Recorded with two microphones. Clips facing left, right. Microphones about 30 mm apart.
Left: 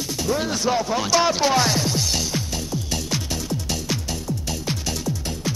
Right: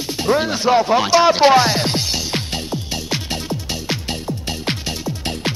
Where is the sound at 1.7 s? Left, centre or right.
Right.